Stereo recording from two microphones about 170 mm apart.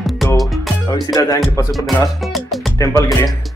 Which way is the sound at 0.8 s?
25° left (ahead or behind).